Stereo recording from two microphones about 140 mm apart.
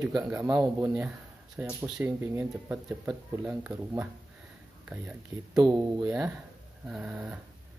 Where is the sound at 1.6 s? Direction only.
15° right (ahead or behind).